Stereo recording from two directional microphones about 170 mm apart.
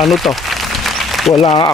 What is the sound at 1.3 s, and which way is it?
Speech, 30° left (ahead or behind).